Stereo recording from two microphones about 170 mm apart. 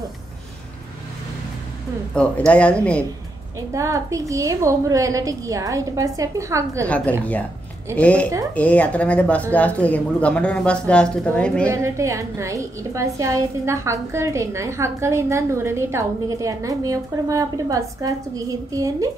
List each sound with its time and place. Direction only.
2.1 s speech: 5° left (ahead or behind)
3.7 s a woman's voice: 20° right (ahead or behind)
7.9 s speech: 10° left (ahead or behind)
11.7 s a woman's voice: 20° right (ahead or behind)